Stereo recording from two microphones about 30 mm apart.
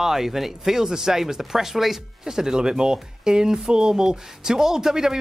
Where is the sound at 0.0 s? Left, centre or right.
Centre.